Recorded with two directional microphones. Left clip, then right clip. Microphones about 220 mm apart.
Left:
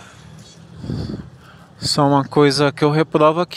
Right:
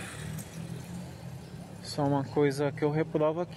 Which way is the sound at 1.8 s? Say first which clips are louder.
Left 15 dB; 30° left (ahead or behind).